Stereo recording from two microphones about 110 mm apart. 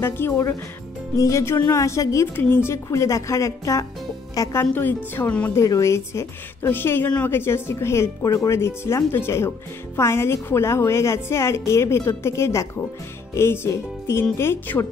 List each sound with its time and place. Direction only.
0.0 s speech: 25° left (ahead or behind)
5.6 s speech: 30° left (ahead or behind)